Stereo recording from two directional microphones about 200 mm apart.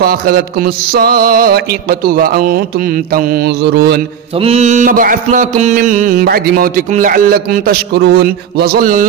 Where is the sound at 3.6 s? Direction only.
55° right (ahead or behind).